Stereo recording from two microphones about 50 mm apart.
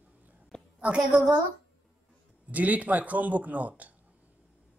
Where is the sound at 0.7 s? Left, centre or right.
Right.